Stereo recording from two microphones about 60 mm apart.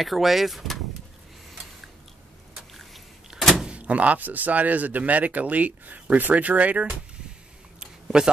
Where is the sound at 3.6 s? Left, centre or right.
Right.